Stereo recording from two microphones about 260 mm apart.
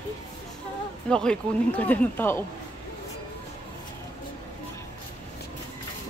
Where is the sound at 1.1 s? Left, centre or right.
Centre.